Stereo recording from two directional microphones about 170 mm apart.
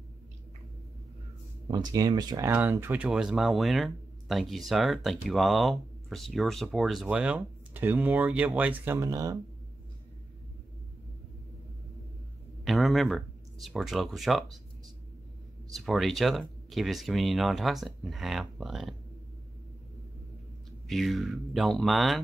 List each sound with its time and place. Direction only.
1.7 s speech: 25° right (ahead or behind)
12.6 s speech: centre (ahead or behind)
15.7 s speech: centre (ahead or behind)
20.9 s speech: centre (ahead or behind)